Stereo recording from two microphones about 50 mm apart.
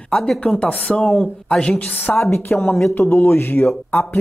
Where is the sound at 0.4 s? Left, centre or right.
Left.